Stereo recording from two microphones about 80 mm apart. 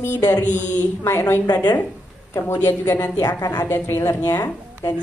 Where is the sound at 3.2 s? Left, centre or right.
Left.